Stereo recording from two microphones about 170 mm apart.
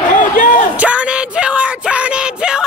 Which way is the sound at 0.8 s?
5° right (ahead or behind).